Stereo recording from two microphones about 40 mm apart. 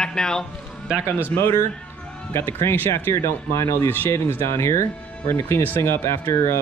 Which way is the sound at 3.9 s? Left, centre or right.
Left.